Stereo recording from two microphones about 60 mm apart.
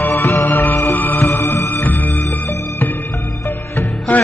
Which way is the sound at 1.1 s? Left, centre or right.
Left.